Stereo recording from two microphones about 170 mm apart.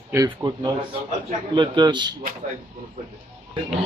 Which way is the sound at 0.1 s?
20° right (ahead or behind).